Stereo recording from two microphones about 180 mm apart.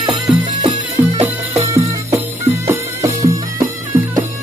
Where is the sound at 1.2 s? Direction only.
15° right (ahead or behind).